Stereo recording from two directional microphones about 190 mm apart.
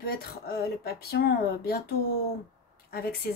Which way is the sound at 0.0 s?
50° left (ahead or behind).